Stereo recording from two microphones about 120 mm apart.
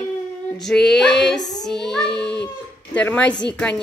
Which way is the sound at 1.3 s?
35° left (ahead or behind).